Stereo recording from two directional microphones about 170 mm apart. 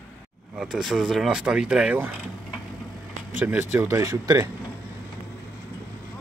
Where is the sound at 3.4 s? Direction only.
10° right (ahead or behind).